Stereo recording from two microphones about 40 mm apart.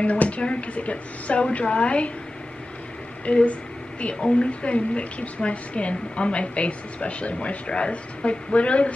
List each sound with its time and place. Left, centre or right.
0.0 s a woman's voice: left
3.3 s a woman's voice: left